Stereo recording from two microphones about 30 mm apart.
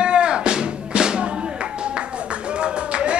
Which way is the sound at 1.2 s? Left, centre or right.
Right.